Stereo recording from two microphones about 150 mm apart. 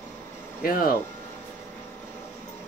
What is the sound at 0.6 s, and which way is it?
Speech, 75° left (ahead or behind).